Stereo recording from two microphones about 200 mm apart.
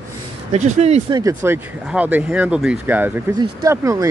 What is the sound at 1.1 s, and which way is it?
Speech, 20° right (ahead or behind).